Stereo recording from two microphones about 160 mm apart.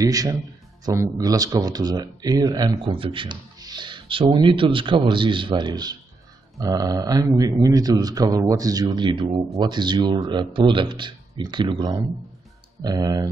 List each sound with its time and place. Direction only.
0.0 s speech: 20° right (ahead or behind)